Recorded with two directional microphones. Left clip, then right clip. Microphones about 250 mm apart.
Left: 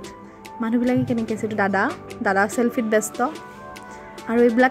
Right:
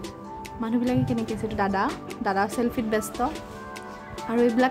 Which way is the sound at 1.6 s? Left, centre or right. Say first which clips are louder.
Left 4 dB; centre.